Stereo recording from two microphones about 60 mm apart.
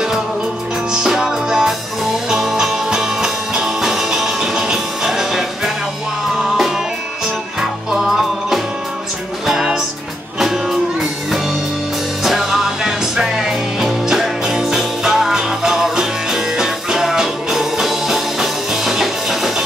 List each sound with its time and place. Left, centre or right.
0.9 s music: centre
6.4 s music: centre
7.9 s music: centre
12.2 s music: centre